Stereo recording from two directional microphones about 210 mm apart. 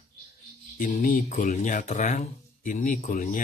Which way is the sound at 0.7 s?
40° left (ahead or behind).